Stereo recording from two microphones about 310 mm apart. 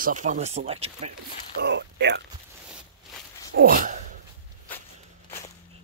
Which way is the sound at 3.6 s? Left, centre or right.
Right.